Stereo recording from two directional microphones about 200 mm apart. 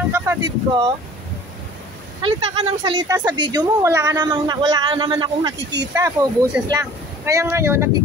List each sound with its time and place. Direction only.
0.1 s speech: 15° right (ahead or behind)
2.2 s a woman's voice: 25° right (ahead or behind)
5.6 s speech: 60° right (ahead or behind)
5.9 s speech: 15° right (ahead or behind)